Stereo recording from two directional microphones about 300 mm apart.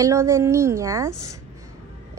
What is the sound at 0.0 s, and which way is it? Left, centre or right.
A woman's voice, centre.